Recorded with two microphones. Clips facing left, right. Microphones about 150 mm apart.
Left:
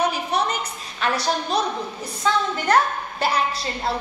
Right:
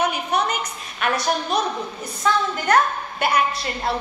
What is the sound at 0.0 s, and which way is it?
A woman's voice, 30° left (ahead or behind).